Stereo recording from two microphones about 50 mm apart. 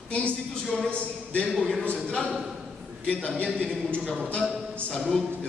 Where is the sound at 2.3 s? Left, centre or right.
Centre.